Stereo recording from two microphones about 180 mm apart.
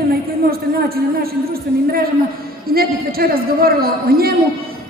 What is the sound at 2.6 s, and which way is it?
A man's voice, 55° right (ahead or behind).